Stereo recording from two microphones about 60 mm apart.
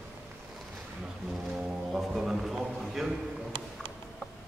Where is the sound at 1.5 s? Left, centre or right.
Centre.